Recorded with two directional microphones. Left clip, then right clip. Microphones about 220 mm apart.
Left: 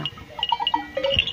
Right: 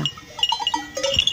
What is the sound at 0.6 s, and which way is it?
Goat, 40° right (ahead or behind).